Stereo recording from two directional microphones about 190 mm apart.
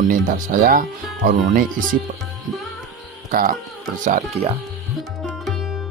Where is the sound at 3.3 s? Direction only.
50° right (ahead or behind).